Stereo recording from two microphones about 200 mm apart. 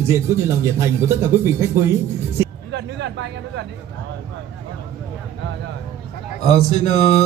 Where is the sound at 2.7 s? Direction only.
60° right (ahead or behind).